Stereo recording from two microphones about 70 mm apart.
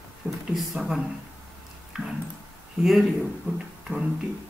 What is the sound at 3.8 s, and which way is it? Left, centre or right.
Music, centre.